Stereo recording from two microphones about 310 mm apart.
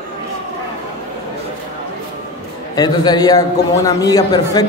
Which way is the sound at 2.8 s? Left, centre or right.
Centre.